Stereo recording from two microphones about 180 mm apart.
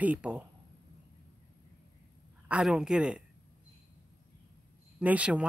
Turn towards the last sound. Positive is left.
turn(degrees=-5)  # may be behind; listen again after turning